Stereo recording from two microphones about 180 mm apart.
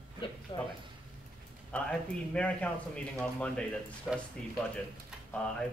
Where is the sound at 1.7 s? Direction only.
5° left (ahead or behind).